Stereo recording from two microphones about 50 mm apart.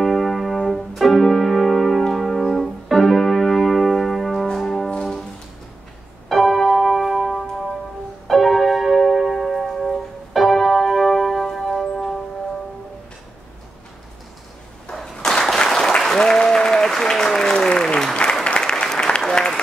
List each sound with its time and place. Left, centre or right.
0.0 s music: centre
6.2 s music: centre
14.9 s applause: centre